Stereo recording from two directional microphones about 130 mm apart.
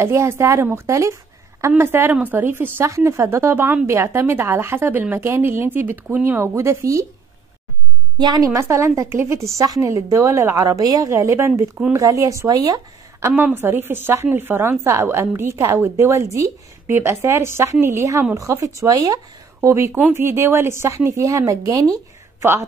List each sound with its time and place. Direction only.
0.0 s a woman's voice: 20° right (ahead or behind)
8.2 s a woman's voice: 30° right (ahead or behind)
8.5 s a woman's voice: 20° right (ahead or behind)
13.6 s a woman's voice: 15° right (ahead or behind)
21.9 s a sound: 20° right (ahead or behind)